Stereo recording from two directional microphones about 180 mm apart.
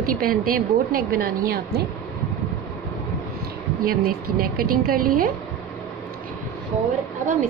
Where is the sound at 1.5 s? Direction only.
65° right (ahead or behind).